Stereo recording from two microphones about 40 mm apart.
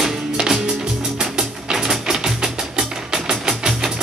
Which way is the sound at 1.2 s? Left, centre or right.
Centre.